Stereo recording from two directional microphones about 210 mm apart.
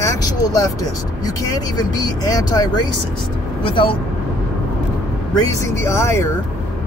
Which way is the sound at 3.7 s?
25° left (ahead or behind).